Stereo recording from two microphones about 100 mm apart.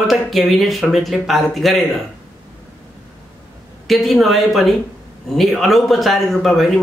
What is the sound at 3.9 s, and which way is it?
Speech, centre (ahead or behind).